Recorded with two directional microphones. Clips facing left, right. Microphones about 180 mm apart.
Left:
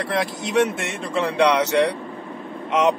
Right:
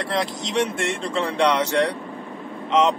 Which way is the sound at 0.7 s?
Centre (ahead or behind).